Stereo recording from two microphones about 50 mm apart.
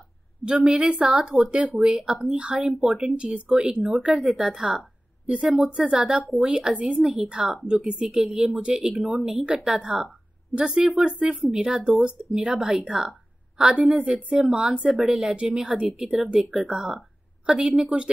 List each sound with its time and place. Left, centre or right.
0.5 s a woman's voice: centre